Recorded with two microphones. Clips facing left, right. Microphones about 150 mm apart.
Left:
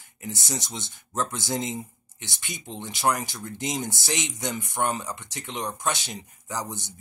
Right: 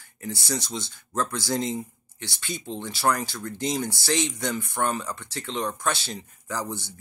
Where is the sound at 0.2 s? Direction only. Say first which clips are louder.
Right 3 dB; 20° left (ahead or behind).